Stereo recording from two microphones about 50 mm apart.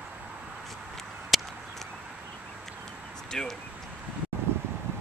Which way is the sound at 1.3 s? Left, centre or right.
Centre.